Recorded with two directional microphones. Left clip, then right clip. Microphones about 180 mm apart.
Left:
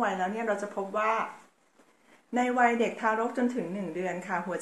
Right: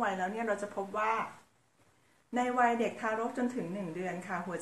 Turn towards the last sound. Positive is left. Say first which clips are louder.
# left 5 dB
turn(degrees=5)  # may be behind; listen again after turning